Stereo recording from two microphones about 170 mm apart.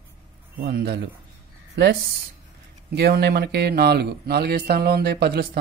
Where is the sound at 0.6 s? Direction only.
65° right (ahead or behind).